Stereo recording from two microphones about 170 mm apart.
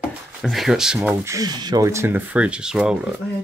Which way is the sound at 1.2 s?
20° right (ahead or behind).